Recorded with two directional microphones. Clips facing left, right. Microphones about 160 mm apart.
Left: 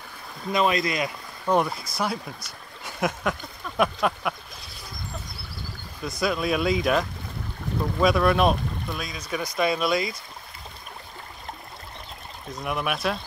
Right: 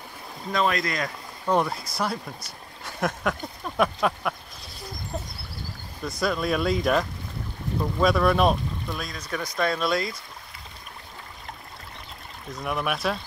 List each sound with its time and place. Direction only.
0.5 s speech: 15° left (ahead or behind)
1.4 s speech: 5° left (ahead or behind)
2.8 s a sound: centre (ahead or behind)
3.7 s speech: 5° left (ahead or behind)
6.0 s speech: 5° left (ahead or behind)
12.6 s speech: centre (ahead or behind)